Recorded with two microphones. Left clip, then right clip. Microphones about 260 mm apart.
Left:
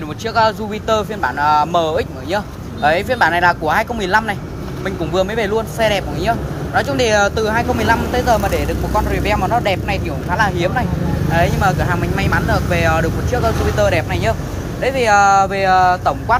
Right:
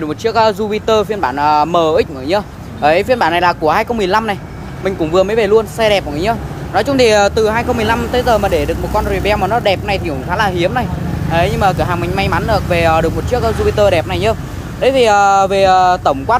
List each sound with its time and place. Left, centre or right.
0.2 s speech: right